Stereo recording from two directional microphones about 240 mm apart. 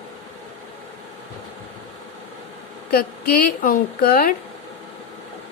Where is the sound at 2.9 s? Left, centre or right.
Left.